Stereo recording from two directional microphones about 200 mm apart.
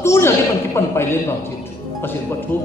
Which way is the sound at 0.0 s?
15° left (ahead or behind).